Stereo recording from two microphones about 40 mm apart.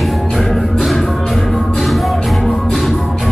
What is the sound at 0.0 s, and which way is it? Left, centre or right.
Music, centre.